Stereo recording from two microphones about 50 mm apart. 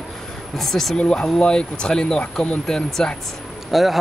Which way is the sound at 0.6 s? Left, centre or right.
Centre.